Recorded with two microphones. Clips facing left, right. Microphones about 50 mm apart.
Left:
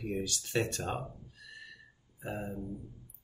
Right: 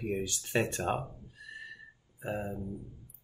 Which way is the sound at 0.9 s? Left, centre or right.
Centre.